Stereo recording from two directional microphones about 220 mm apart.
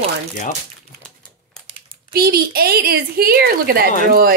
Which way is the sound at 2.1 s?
45° right (ahead or behind).